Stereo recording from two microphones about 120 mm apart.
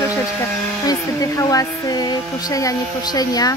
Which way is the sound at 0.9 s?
30° left (ahead or behind).